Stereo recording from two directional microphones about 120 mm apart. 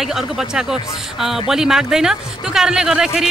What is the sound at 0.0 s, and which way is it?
Speech, 5° right (ahead or behind).